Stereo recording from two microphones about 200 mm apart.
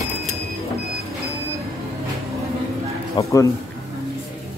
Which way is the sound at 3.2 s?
15° left (ahead or behind).